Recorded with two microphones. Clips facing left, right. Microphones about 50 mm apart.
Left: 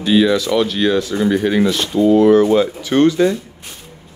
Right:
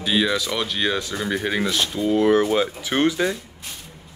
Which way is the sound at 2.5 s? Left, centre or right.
Centre.